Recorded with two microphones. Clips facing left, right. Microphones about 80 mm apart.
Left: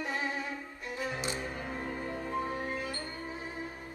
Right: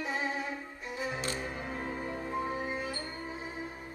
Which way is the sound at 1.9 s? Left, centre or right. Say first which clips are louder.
Left 1 dB; centre.